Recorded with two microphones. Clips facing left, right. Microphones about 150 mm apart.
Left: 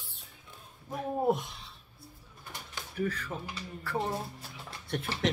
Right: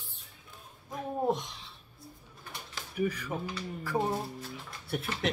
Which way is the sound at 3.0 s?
10° right (ahead or behind).